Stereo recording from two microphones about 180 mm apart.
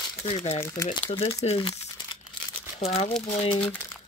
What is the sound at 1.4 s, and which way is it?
Speech, 30° left (ahead or behind).